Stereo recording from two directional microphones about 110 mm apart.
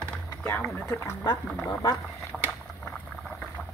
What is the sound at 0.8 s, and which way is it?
Speech, 25° left (ahead or behind).